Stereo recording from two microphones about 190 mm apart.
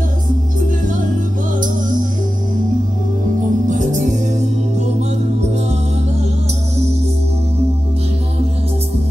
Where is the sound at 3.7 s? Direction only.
40° right (ahead or behind).